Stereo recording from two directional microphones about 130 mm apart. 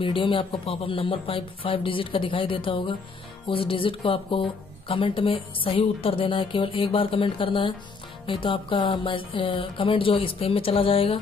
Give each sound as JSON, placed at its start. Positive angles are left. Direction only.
{"t": 0.0, "sound": "speech", "side_deg": 40}